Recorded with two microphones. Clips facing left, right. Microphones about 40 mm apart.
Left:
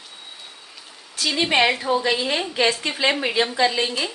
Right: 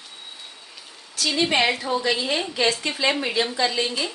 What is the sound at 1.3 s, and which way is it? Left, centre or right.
A woman's voice, centre.